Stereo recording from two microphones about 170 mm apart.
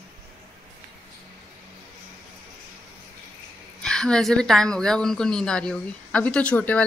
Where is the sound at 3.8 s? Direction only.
5° left (ahead or behind).